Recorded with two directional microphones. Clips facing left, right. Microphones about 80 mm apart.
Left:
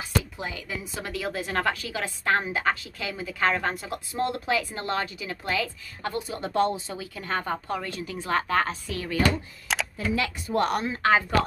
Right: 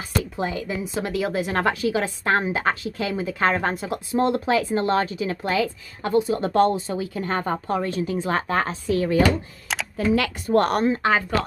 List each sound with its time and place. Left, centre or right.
0.2 s speech: right
1.0 s a woman's voice: centre
6.4 s a woman's voice: right
7.0 s a woman's voice: right
9.9 s a woman's voice: right